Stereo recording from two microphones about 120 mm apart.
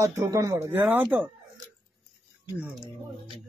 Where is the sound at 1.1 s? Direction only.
15° right (ahead or behind).